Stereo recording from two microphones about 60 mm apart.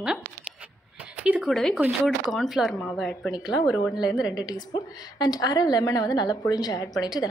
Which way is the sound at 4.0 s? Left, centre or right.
Left.